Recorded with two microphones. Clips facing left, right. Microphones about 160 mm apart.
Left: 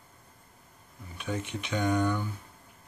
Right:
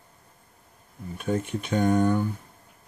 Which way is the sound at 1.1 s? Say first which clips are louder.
Right 7 dB; 45° right (ahead or behind).